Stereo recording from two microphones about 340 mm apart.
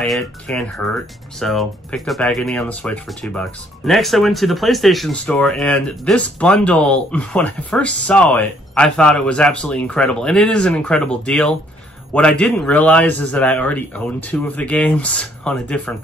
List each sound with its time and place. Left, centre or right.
0.0 s speech: centre